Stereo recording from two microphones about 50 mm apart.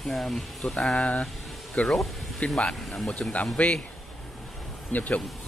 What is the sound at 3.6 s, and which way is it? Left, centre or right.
Speech, left.